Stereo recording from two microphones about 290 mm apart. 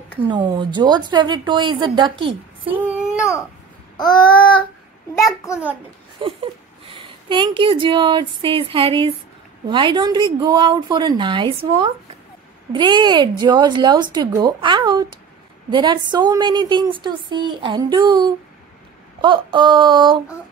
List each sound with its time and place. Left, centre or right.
0.3 s speech: centre
3.2 s babbling: centre
6.2 s speech: centre